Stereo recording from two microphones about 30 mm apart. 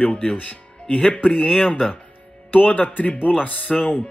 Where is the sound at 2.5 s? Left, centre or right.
Left.